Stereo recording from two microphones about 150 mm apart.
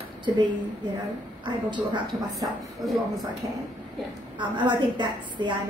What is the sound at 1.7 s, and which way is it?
Speech, 30° right (ahead or behind).